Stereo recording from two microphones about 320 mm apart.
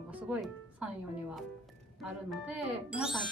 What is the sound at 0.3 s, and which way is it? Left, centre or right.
Speech, centre.